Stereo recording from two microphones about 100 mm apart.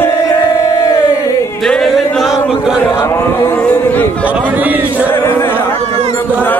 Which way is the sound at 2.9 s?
30° left (ahead or behind).